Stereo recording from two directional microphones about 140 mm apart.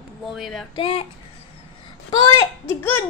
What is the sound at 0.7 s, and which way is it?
Speech, 40° left (ahead or behind).